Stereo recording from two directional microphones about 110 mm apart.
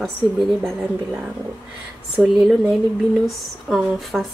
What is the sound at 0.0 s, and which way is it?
Speech, centre (ahead or behind).